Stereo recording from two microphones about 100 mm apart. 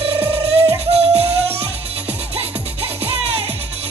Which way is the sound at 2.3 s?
80° right.